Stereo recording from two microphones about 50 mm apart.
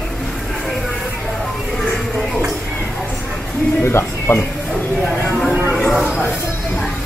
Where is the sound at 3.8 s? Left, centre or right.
Left.